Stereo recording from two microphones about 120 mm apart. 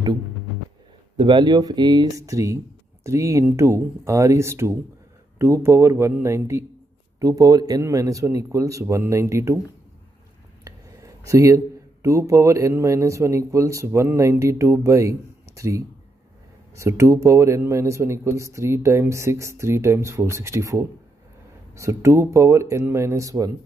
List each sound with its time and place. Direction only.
1.1 s speech: 40° right (ahead or behind); by 9.6 s 25° right (ahead or behind)
10.6 s speech: 25° right (ahead or behind)